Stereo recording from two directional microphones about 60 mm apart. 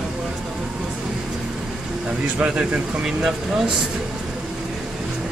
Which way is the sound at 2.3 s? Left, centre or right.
Right.